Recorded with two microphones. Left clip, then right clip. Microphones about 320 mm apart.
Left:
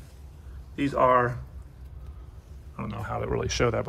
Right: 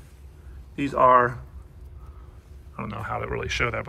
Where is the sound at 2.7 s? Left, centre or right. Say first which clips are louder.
Right 3 dB; centre.